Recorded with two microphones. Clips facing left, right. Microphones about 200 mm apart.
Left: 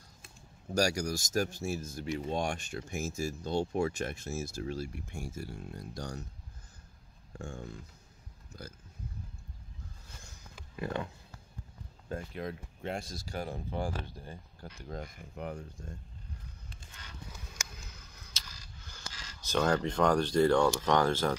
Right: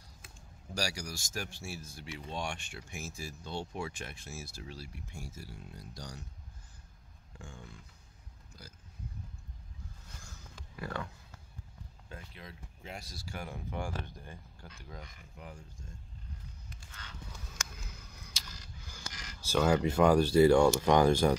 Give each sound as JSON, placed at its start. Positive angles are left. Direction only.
{"t": 0.7, "sound": "speech", "side_deg": 45}
{"t": 7.3, "sound": "speech", "side_deg": 45}
{"t": 10.8, "sound": "speech", "side_deg": 20}
{"t": 12.1, "sound": "speech", "side_deg": 50}
{"t": 13.1, "sound": "speech", "side_deg": 40}
{"t": 17.8, "sound": "camera", "side_deg": -10}
{"t": 20.8, "sound": "speech", "side_deg": -15}